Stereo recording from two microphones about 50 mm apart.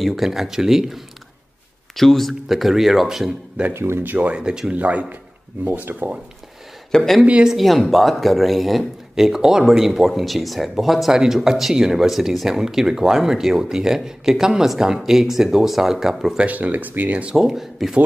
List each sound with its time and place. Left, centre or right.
0.0 s speech: centre
2.0 s speech: centre
3.7 s speech: right
4.0 s speech: right
4.3 s speech: centre
4.7 s speech: right
6.9 s speech: centre
7.4 s speech: centre
16.4 s speech: right
17.4 s speech: centre